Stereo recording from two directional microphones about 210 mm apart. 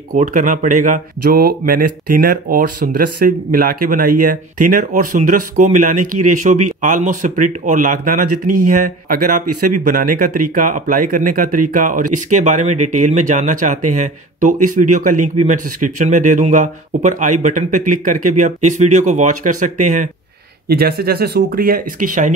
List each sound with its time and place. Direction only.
0.1 s speech: 40° right (ahead or behind)